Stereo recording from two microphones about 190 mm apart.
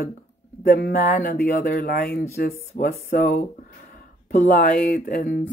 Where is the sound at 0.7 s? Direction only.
55° left (ahead or behind).